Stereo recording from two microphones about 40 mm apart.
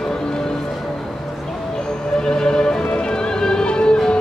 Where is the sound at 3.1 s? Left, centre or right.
Centre.